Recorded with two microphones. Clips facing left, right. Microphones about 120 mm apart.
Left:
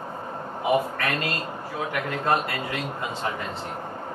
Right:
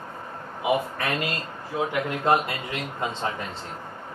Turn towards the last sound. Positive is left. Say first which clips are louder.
# even
turn(degrees=-20)  # may be behind; listen again after turning